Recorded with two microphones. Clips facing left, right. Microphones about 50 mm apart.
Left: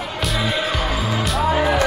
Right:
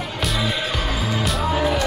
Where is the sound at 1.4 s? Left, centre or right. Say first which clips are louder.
Left 3 dB; left.